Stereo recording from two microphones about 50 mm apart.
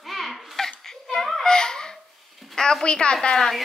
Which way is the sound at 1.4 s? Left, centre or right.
Centre.